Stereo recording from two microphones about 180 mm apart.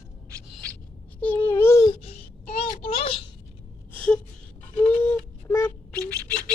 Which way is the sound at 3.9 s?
5° left (ahead or behind).